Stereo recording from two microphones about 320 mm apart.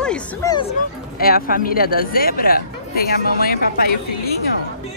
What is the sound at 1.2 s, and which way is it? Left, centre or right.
Speech, left.